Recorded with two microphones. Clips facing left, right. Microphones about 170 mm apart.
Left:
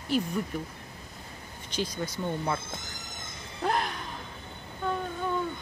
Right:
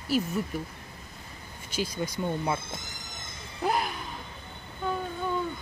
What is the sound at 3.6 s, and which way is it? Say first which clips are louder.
Music: right 1 dB; 5° right (ahead or behind).